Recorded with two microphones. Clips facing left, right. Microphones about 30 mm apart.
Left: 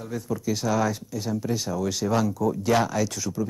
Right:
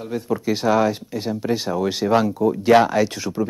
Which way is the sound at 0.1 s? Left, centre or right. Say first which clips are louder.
Right 6 dB; right.